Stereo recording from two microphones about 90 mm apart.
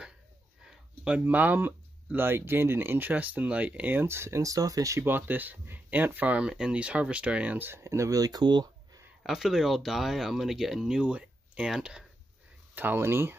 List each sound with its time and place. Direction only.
0.7 s speech: 15° right (ahead or behind); by 5.0 s 40° right (ahead or behind)
5.0 s speech: 20° right (ahead or behind); by 9.0 s 50° right (ahead or behind)
9.2 s speech: centre (ahead or behind)
12.7 s speech: 25° right (ahead or behind)